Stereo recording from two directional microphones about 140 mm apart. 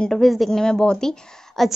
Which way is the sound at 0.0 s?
Centre (ahead or behind).